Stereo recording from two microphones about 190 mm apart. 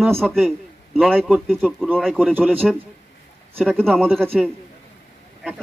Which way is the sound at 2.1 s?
10° right (ahead or behind).